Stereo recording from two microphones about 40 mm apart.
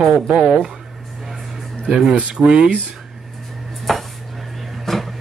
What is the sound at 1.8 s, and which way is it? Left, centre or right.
Speech, right.